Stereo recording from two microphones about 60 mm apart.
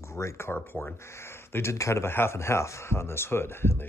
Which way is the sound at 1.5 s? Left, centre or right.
Left.